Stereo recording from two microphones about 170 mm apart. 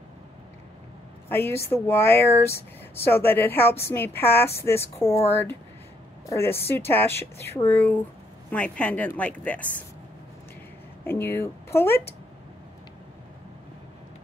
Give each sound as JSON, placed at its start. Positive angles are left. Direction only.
{"t": 1.3, "sound": "speech", "side_deg": 15}
{"t": 6.2, "sound": "speech", "side_deg": 15}
{"t": 11.1, "sound": "speech", "side_deg": 15}